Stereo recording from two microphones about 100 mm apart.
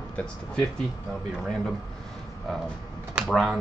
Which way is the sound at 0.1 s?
10° left (ahead or behind).